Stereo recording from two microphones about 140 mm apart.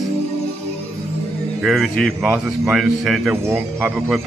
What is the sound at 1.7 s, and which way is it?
A man's voice, centre (ahead or behind).